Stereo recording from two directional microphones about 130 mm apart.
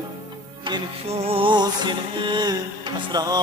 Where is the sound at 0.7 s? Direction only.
35° right (ahead or behind).